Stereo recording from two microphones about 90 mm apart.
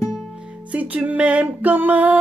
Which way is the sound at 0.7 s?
15° right (ahead or behind).